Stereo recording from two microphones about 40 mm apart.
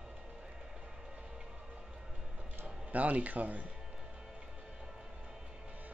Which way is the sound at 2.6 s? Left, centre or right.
Right.